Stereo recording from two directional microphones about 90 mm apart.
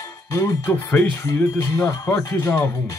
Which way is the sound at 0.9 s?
25° left (ahead or behind).